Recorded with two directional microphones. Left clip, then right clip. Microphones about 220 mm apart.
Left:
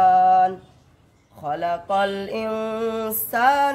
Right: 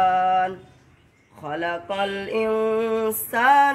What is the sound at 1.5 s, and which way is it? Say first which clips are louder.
Music: left 4 dB; 55° left (ahead or behind).